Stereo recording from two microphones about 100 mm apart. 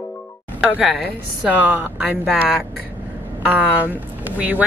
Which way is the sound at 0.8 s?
10° right (ahead or behind).